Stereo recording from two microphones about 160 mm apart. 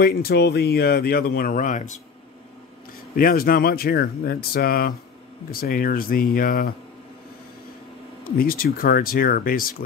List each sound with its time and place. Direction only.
0.0 s speech: 70° left (ahead or behind); by 2.0 s 50° left (ahead or behind)
3.2 s speech: 65° left (ahead or behind)
8.2 s speech: 65° left (ahead or behind)